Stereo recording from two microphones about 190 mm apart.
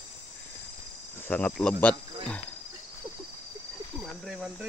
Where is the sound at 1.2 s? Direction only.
5° left (ahead or behind).